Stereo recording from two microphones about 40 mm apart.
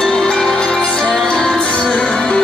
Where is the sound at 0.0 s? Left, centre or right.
Centre.